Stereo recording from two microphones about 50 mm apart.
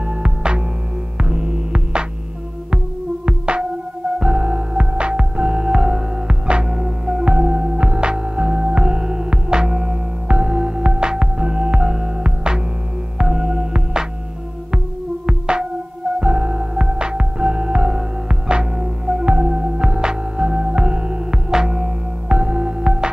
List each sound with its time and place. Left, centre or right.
0.2 s music: centre
3.3 s music: centre
15.2 s music: centre